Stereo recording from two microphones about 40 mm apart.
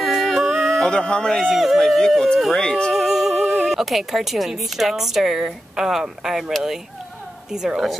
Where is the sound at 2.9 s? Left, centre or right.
Centre.